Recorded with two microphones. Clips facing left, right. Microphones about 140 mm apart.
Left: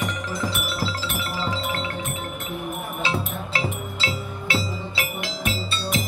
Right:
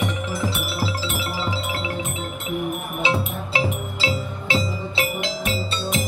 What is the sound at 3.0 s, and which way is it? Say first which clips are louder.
Music: right 4 dB; 15° right (ahead or behind).